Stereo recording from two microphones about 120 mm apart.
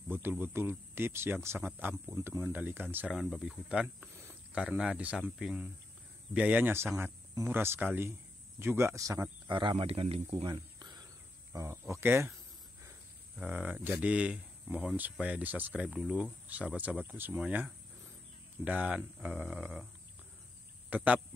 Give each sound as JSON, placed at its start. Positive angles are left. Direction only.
{"t": 0.1, "sound": "speech", "side_deg": -15}
{"t": 3.1, "sound": "speech", "side_deg": 0}
{"t": 4.1, "sound": "speech", "side_deg": -20}
{"t": 9.5, "sound": "speech", "side_deg": -40}
{"t": 10.4, "sound": "cricket", "side_deg": -35}
{"t": 11.5, "sound": "speech", "side_deg": -25}
{"t": 13.5, "sound": "speech", "side_deg": -10}
{"t": 20.9, "sound": "speech", "side_deg": -15}